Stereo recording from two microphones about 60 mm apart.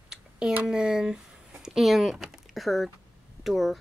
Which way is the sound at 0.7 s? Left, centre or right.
Centre.